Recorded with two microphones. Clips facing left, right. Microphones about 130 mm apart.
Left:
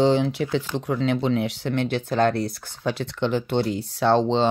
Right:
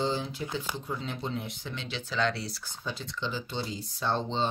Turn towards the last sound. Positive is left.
turn(degrees=80)